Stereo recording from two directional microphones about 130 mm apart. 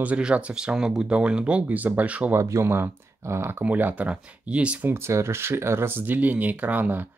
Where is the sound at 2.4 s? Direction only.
20° right (ahead or behind).